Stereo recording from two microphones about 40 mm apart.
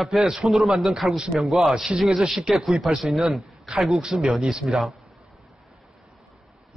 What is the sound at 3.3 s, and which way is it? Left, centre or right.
A man's voice, centre.